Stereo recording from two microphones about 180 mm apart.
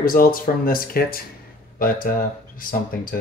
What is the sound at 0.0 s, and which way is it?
Speech, 50° left (ahead or behind).